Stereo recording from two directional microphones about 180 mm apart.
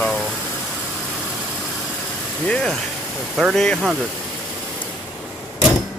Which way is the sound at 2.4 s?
5° left (ahead or behind).